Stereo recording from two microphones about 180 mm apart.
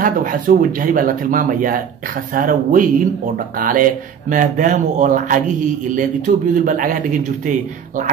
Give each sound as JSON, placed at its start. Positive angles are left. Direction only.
{"t": 0.0, "sound": "speech", "side_deg": -50}